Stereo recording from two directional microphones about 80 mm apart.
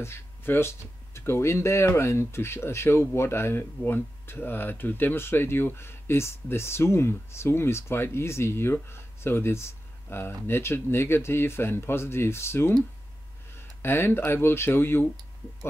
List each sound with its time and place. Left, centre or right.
0.0 s speech: left